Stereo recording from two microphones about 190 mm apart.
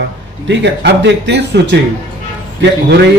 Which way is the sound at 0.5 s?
70° right (ahead or behind).